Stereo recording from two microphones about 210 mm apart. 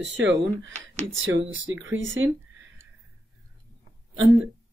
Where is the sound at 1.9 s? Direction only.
65° right (ahead or behind).